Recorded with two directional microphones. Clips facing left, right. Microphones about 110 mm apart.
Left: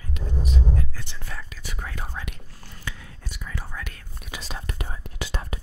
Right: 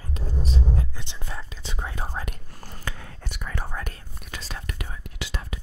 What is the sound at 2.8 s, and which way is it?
Whispering, 55° right (ahead or behind).